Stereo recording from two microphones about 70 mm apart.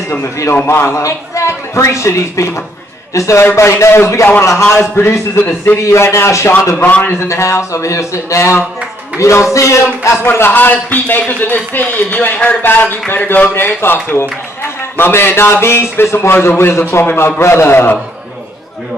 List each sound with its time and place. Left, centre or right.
0.1 s a man's voice: left
6.8 s a man's voice: left
7.2 s a man's voice: left